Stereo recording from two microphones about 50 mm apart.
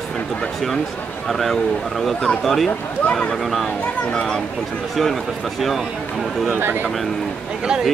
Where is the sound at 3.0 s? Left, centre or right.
Left.